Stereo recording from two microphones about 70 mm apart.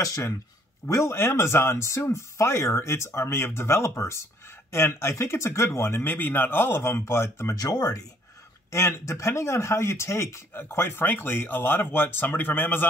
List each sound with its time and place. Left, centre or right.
0.8 s speech: left
7.5 s speech: left
8.7 s speech: left
10.5 s speech: left